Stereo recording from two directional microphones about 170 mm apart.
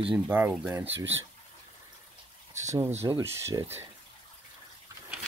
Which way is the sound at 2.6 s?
15° right (ahead or behind).